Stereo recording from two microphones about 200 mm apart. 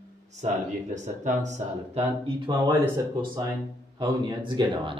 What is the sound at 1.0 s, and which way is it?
A man's voice, 35° right (ahead or behind).